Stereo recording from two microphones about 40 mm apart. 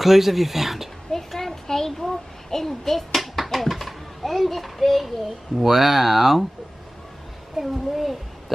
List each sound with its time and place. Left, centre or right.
0.0 s speech: centre
1.1 s a sound: centre
5.6 s speech: centre
7.5 s speech: centre